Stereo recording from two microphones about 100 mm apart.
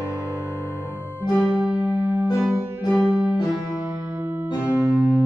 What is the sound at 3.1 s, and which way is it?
Music, 10° right (ahead or behind).